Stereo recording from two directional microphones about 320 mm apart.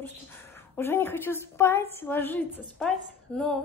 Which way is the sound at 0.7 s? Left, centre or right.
Centre.